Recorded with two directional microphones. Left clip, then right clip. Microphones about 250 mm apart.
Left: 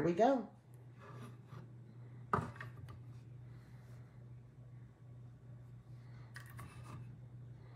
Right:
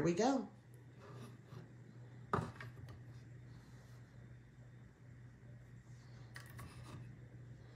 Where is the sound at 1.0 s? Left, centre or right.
Centre.